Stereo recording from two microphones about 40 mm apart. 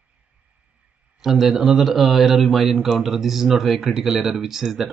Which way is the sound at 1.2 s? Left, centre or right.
Centre.